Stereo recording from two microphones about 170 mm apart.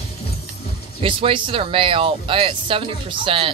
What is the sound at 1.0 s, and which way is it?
Speech, 30° right (ahead or behind).